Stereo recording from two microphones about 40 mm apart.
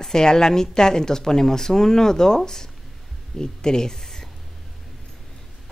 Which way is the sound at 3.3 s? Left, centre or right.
Centre.